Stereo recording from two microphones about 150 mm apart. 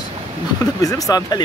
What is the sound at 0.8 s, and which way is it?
Speech, 25° left (ahead or behind).